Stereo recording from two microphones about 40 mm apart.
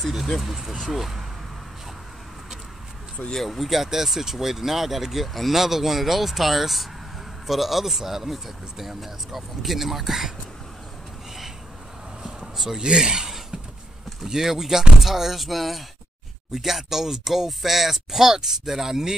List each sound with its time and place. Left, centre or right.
0.4 s speech: centre
3.3 s speech: centre
12.6 s speech: centre
14.2 s speech: centre